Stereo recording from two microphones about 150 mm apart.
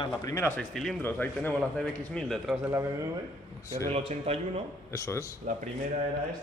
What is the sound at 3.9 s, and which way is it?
Speech, 45° right (ahead or behind).